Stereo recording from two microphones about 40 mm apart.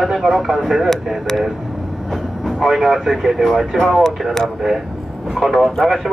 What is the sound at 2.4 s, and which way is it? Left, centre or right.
Speech, centre.